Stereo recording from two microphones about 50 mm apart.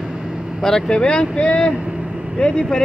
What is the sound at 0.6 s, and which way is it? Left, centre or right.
A man's voice, centre.